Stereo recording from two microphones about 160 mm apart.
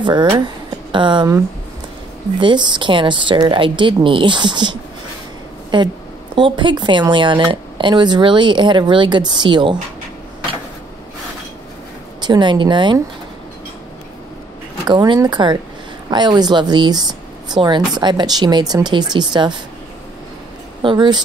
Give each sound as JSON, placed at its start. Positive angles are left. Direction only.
{"t": 0.0, "sound": "speech", "side_deg": -30}
{"t": 2.4, "sound": "speech", "side_deg": -30}
{"t": 12.2, "sound": "speech", "side_deg": -30}
{"t": 14.9, "sound": "speech", "side_deg": -25}
{"t": 20.8, "sound": "speech", "side_deg": -30}